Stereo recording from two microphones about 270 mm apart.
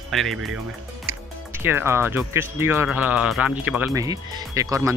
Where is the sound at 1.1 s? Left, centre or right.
Right.